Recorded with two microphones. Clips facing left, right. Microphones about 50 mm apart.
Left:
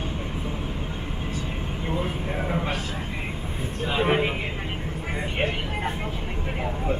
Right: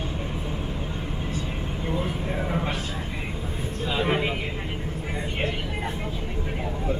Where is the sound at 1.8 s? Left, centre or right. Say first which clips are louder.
Even; centre.